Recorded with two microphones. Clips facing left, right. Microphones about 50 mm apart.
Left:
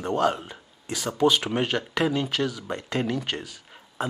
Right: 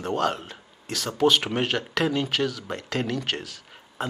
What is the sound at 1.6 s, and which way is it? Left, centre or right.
Speech, centre.